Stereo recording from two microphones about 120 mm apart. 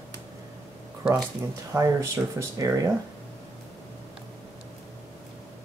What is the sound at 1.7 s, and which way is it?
Speech, 25° right (ahead or behind).